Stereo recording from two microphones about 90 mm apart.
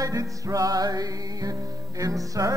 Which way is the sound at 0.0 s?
40° right (ahead or behind).